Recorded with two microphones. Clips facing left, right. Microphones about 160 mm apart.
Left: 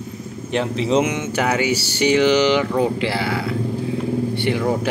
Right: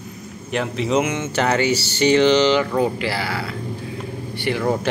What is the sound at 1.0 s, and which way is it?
Speech, 15° left (ahead or behind).